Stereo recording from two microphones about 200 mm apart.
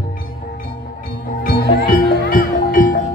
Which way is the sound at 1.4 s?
45° left (ahead or behind).